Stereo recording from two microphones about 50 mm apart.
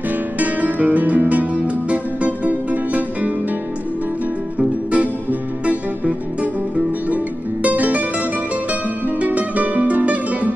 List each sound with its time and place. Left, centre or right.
0.4 s music: right
4.6 s music: right
7.6 s music: right
9.0 s music: right